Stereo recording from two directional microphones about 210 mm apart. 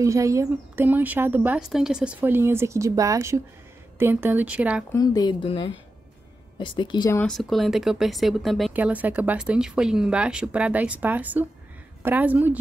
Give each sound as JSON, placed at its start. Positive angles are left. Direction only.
{"t": 0.0, "sound": "speech", "side_deg": -15}
{"t": 4.9, "sound": "speech", "side_deg": 20}
{"t": 7.2, "sound": "speech", "side_deg": 0}